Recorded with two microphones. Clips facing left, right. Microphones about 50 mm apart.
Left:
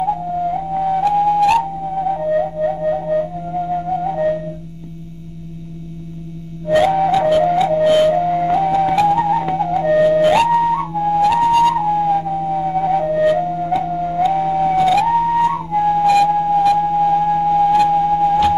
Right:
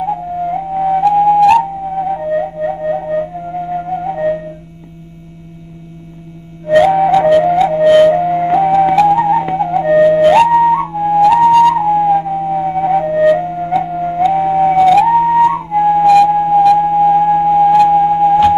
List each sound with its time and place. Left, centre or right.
0.0 s flute: centre
6.8 s music: centre
7.6 s music: right
9.0 s theremin: centre
10.5 s flute: centre
14.0 s music: right
15.1 s flute: centre
16.3 s music: centre